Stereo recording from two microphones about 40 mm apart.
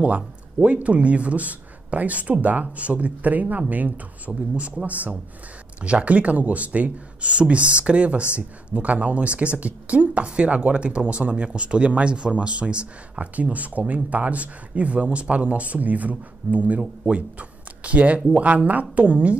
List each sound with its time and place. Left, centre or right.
0.0 s speech: right
4.3 s speech: right
5.8 s speech: right
13.4 s speech: right